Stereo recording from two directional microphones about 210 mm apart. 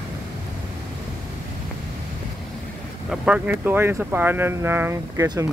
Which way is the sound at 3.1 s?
5° right (ahead or behind).